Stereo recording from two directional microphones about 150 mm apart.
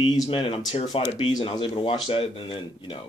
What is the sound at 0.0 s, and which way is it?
Speech, 30° left (ahead or behind).